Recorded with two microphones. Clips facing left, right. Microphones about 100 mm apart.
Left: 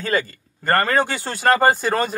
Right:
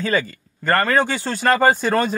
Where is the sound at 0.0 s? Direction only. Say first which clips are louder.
Right 1 dB; 45° left (ahead or behind).